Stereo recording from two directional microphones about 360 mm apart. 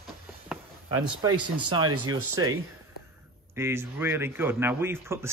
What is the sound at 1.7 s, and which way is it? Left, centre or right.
Speech, centre.